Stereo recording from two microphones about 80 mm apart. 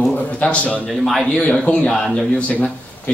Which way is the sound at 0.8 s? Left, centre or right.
Centre.